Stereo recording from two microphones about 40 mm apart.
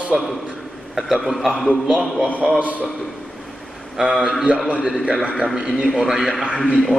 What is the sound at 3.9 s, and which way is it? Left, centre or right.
Speech, centre.